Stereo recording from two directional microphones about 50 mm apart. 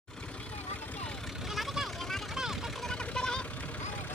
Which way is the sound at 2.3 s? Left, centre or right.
Centre.